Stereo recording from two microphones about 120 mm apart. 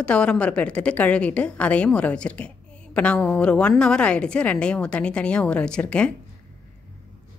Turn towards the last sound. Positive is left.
turn(degrees=10)  # may be behind; listen again after turning